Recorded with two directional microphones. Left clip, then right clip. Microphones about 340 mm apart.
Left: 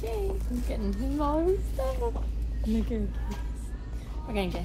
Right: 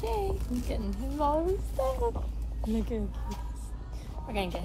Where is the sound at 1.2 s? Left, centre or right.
Left.